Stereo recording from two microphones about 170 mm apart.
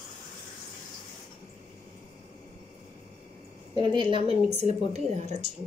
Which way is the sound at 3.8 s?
30° right (ahead or behind).